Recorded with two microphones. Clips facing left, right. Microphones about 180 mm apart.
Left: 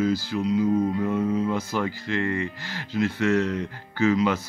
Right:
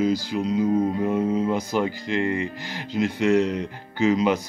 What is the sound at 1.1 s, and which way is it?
Speech, 20° right (ahead or behind).